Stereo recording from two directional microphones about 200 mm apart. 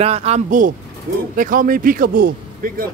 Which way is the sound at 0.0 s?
30° right (ahead or behind).